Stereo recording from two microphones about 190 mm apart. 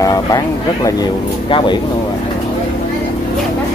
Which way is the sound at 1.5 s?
25° left (ahead or behind).